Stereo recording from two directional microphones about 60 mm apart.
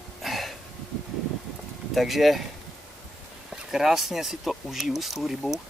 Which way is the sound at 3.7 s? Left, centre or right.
Centre.